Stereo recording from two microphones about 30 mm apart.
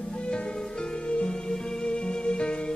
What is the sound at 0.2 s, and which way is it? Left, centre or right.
Music, left.